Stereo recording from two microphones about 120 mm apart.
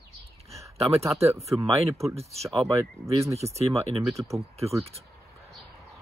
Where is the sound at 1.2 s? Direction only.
25° right (ahead or behind).